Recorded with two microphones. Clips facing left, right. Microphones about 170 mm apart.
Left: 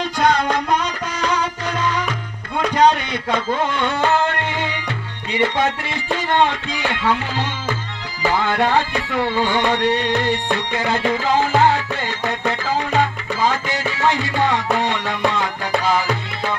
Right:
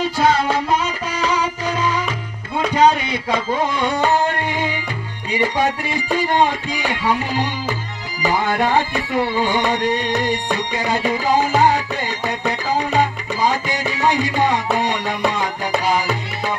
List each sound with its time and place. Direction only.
0.0 s music: 5° right (ahead or behind)